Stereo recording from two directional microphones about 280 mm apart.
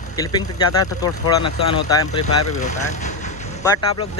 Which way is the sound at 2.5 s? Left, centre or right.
Left.